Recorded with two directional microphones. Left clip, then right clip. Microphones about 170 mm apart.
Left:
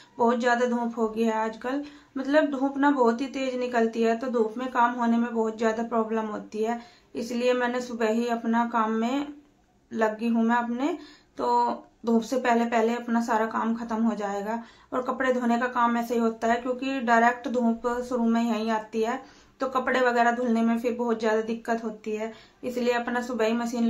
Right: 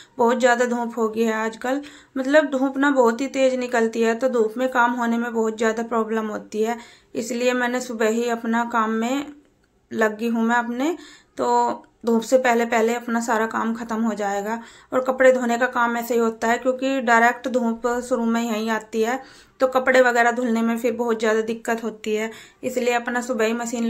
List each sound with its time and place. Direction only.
0.2 s speech: 25° right (ahead or behind)